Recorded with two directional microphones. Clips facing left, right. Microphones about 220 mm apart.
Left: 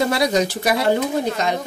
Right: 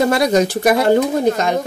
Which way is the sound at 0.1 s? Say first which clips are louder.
Right 4 dB; 50° right (ahead or behind).